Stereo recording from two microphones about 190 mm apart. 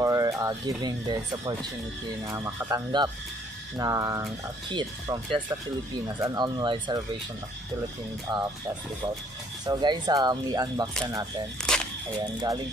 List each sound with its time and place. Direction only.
0.0 s speech: 15° right (ahead or behind)
8.3 s speech: 20° right (ahead or behind)
9.7 s speech: 20° right (ahead or behind)
11.7 s single-lens reflex camera: 5° left (ahead or behind)
12.4 s speech: 20° right (ahead or behind)